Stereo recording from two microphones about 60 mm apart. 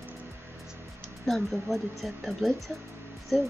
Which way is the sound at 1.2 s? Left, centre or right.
Centre.